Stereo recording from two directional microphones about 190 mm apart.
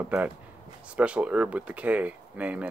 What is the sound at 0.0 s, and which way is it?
Speech, 10° right (ahead or behind).